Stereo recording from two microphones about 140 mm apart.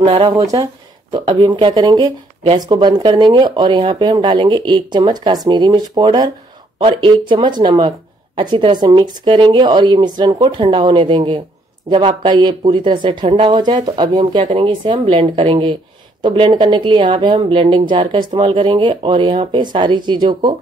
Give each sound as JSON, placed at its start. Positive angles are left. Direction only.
{"t": 0.0, "sound": "speech", "side_deg": -35}